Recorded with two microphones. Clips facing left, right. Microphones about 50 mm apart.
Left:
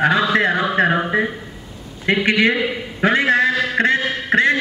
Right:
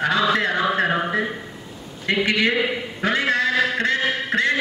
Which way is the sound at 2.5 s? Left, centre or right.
Centre.